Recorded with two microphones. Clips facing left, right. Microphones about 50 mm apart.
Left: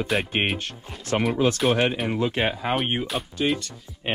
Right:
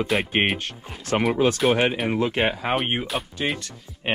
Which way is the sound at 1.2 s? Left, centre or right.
Right.